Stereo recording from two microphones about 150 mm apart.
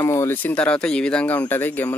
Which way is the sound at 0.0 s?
15° left (ahead or behind).